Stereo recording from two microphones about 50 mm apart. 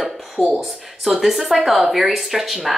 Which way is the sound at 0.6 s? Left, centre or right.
Centre.